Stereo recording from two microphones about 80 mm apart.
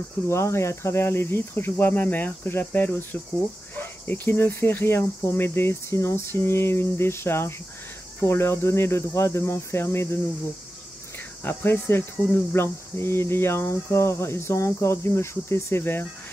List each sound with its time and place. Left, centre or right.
0.3 s speech: left
11.4 s speech: left